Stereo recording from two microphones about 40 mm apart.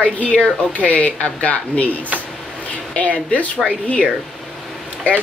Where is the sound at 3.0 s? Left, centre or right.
Left.